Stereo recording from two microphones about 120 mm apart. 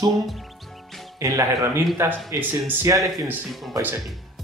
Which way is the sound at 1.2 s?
25° right (ahead or behind).